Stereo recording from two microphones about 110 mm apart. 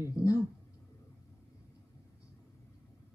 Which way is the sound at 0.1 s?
30° left (ahead or behind).